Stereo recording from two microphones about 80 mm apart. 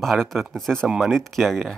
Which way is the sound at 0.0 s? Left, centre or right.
Centre.